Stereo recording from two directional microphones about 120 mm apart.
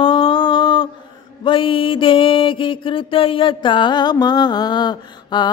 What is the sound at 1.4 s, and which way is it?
Music, 45° left (ahead or behind).